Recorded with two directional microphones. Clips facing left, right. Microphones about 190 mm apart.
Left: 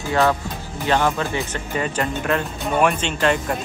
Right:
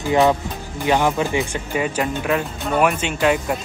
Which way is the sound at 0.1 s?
15° right (ahead or behind).